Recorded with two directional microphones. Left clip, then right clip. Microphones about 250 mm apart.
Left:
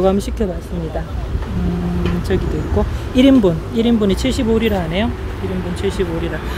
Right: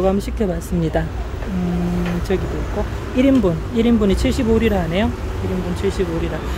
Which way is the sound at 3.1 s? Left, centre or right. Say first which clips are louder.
Left 4 dB; centre.